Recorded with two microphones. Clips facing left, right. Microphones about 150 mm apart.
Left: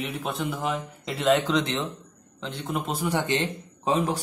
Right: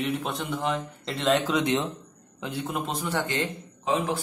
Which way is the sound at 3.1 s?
20° left (ahead or behind).